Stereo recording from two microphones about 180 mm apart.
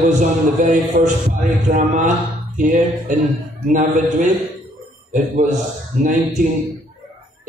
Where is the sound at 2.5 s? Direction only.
45° right (ahead or behind).